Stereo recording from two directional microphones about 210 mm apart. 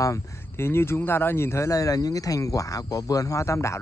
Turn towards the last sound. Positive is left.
turn(degrees=15)  # may be behind; listen again after turning